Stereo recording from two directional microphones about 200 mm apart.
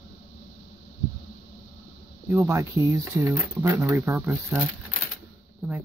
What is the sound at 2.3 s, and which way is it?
Speech, 15° right (ahead or behind).